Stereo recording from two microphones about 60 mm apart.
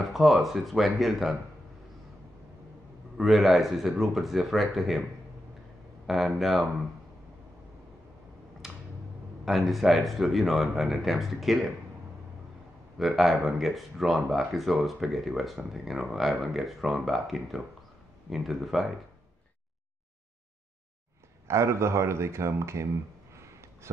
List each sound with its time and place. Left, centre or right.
0.0 s speech: centre
3.2 s speech: centre
6.0 s speech: centre
8.6 s a sound: centre
9.4 s speech: centre
13.0 s speech: centre
21.5 s speech: right
23.3 s a sound: right